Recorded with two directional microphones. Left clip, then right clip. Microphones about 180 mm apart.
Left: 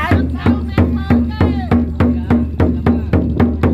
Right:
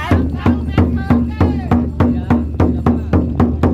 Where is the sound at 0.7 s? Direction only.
50° right (ahead or behind).